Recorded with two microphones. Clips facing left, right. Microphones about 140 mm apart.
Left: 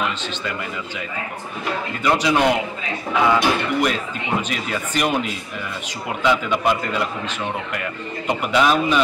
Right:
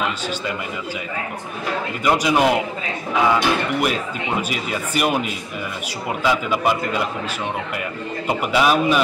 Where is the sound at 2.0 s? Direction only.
10° right (ahead or behind).